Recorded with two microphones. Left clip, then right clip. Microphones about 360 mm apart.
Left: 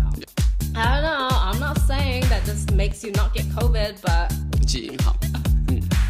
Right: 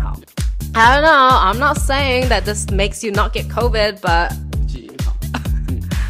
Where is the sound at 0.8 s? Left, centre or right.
Right.